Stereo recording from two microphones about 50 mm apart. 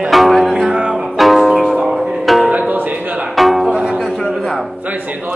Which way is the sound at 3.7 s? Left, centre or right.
Centre.